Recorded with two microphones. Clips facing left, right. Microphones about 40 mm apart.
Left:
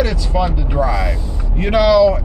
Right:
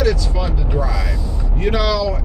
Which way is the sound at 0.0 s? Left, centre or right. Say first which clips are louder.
Left 1 dB; left.